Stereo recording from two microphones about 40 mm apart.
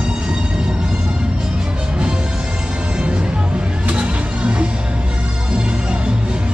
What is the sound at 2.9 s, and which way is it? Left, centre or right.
Music, right.